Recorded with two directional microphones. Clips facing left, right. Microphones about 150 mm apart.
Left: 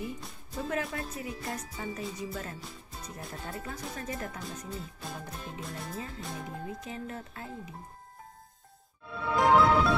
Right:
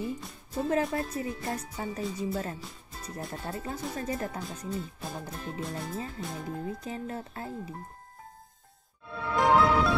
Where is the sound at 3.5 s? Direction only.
30° right (ahead or behind).